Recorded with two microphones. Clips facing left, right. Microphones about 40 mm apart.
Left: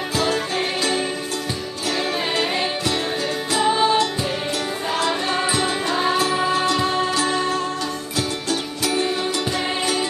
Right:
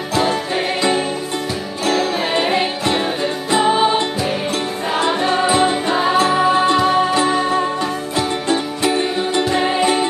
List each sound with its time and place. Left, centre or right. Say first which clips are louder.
0.1 s music: right 5 dB; centre
2.3 s music: right 5 dB; right